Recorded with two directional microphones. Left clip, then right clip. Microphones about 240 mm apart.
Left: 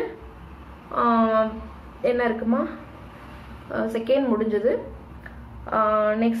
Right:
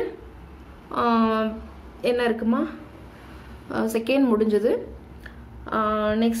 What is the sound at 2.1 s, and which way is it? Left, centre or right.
Speech, right.